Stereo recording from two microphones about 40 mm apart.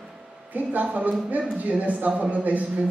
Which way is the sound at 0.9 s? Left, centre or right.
Right.